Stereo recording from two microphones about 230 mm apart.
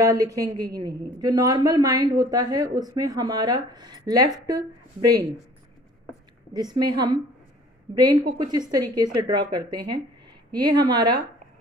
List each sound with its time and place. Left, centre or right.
0.2 s a woman's voice: centre
6.5 s a woman's voice: centre